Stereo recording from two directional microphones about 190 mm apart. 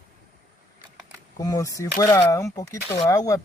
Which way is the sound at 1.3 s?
20° left (ahead or behind).